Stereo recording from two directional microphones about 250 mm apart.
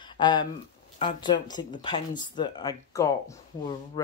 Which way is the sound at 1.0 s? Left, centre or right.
Centre.